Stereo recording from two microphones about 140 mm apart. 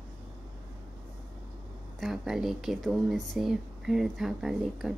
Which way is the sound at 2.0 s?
Centre (ahead or behind).